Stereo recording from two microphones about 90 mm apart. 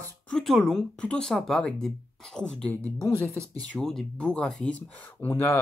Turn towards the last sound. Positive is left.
turn(degrees=20)  # may be behind; listen again after turning